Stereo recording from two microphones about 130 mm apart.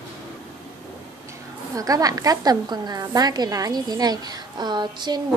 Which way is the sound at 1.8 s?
25° right (ahead or behind).